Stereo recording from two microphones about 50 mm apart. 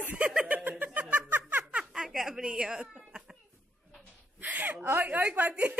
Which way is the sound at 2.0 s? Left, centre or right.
Centre.